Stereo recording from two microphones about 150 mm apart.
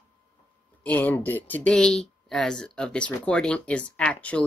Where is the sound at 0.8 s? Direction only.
10° left (ahead or behind).